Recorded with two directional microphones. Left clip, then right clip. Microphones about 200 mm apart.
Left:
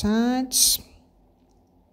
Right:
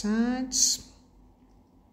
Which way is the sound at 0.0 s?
35° left (ahead or behind).